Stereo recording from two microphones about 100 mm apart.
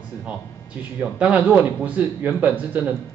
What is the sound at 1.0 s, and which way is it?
A man's voice, 10° right (ahead or behind).